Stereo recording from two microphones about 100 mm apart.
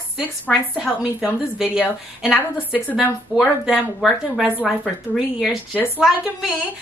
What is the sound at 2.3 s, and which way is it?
Speech, 15° left (ahead or behind).